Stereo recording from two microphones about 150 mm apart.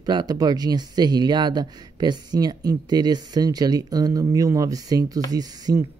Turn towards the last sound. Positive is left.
turn(degrees=-25)  # may be behind; listen again after turning